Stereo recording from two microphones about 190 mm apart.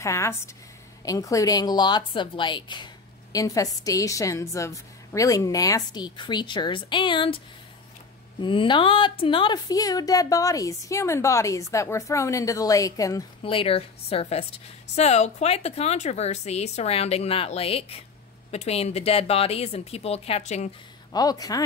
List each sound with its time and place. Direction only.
0.0 s a woman's voice: 15° left (ahead or behind); by 20.7 s 35° left (ahead or behind)
21.1 s a woman's voice: 20° left (ahead or behind)